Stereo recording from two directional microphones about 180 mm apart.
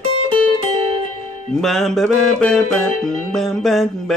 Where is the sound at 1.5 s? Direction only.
Centre (ahead or behind).